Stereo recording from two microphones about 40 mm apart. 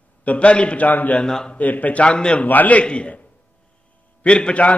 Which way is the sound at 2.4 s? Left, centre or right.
Left.